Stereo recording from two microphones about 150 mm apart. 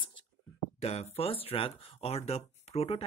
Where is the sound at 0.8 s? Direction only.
45° left (ahead or behind).